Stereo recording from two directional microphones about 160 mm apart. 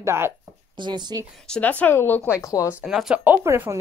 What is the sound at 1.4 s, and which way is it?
Speech, 5° left (ahead or behind).